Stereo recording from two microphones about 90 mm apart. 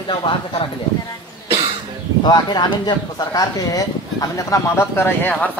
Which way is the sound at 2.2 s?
50° left (ahead or behind).